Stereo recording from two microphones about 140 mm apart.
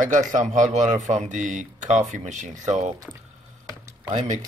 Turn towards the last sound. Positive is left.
turn(degrees=-60)  # may be behind; listen again after turning